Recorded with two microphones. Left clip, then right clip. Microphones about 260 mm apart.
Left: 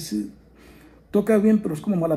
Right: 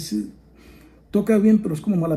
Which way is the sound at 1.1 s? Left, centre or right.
Left.